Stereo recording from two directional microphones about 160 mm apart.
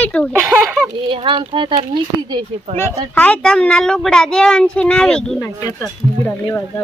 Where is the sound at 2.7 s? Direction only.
10° left (ahead or behind).